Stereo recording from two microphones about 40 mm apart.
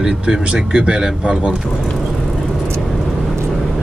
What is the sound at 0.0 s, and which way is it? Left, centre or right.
Speech, right.